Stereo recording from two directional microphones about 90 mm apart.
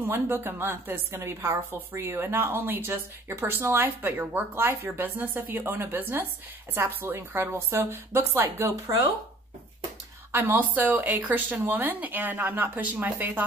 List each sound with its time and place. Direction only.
0.0 s a woman's voice: 25° right (ahead or behind)
10.3 s a woman's voice: 25° right (ahead or behind)